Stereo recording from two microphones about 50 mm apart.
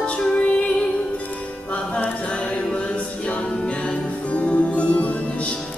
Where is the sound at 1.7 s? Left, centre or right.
Left.